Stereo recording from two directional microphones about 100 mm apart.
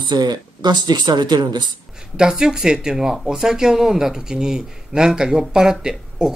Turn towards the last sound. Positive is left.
turn(degrees=-5)  # may be behind; listen again after turning